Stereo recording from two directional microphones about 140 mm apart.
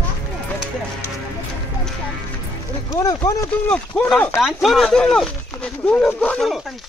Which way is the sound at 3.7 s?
10° left (ahead or behind).